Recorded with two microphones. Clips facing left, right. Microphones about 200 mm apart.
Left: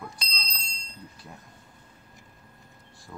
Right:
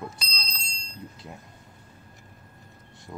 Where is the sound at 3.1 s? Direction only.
20° right (ahead or behind).